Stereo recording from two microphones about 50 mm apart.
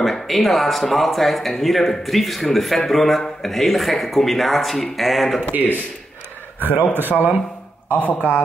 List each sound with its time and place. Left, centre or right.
0.0 s speech: centre
5.5 s a man's voice: right
6.9 s speech: right
7.9 s a man's voice: left